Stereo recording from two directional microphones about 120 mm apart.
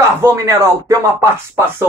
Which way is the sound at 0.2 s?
25° right (ahead or behind).